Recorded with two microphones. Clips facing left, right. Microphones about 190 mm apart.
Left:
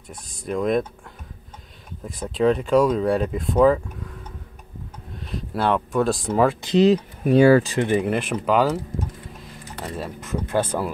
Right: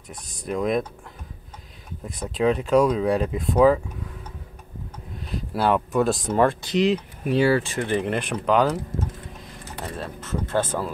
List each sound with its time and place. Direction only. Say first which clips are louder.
0.1 s speech: left 1 dB; centre (ahead or behind)
2.0 s speech: left 2 dB; centre (ahead or behind)
5.2 s speech: even; centre (ahead or behind)
6.9 s speech: left 5 dB; 45° left (ahead or behind)
7.8 s speech: left 3 dB; 10° left (ahead or behind)